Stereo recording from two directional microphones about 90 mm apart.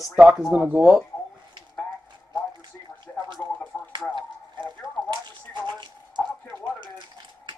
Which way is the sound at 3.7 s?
5° left (ahead or behind).